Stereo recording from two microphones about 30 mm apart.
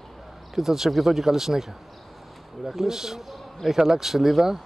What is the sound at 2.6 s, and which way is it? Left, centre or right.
A man's voice, centre.